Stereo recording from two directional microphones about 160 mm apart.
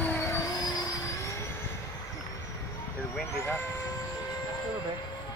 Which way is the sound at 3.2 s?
15° left (ahead or behind).